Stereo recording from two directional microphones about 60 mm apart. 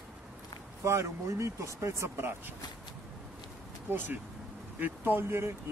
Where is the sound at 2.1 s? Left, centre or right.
Right.